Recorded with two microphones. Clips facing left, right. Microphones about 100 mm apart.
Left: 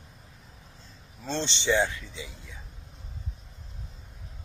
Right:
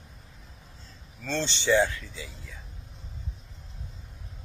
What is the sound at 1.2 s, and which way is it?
Speech, 20° left (ahead or behind).